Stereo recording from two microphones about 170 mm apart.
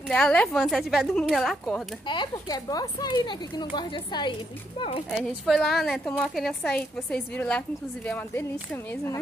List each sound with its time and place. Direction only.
0.1 s a woman's voice: 5° left (ahead or behind)
2.0 s speech: 25° left (ahead or behind)
5.1 s a woman's voice: centre (ahead or behind)